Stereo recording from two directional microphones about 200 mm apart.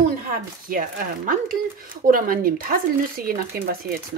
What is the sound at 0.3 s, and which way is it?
Speech, 45° right (ahead or behind).